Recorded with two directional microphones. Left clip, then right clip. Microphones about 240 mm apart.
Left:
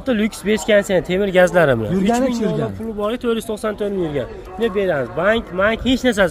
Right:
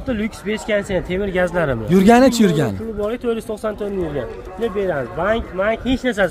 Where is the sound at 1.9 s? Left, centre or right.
Right.